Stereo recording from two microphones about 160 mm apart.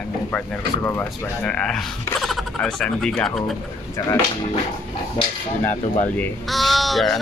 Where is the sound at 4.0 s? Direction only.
20° left (ahead or behind).